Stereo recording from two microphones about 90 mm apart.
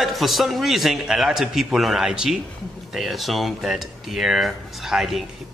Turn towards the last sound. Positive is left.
turn(degrees=-5)  # may be behind; listen again after turning